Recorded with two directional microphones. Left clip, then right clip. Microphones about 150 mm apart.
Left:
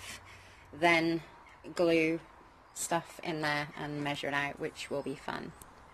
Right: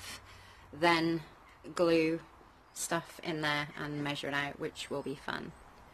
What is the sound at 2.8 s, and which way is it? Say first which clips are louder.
Speech: left 2 dB; 5° right (ahead or behind).